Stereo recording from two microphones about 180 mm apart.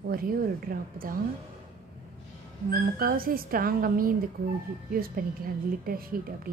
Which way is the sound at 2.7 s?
55° right (ahead or behind).